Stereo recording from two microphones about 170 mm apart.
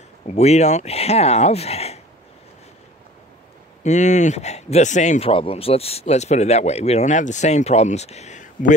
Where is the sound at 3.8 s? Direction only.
45° left (ahead or behind).